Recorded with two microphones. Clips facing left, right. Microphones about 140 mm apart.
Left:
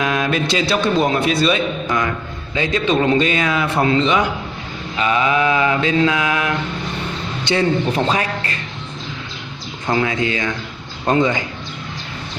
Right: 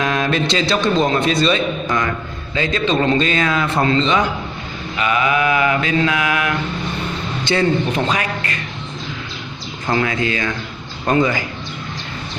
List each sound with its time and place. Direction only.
0.0 s a man's voice: 5° left (ahead or behind)
4.9 s mantra: 30° left (ahead or behind)
7.5 s a man's voice: 15° left (ahead or behind)
7.9 s mantra: 30° left (ahead or behind)
9.8 s mantra: 20° left (ahead or behind)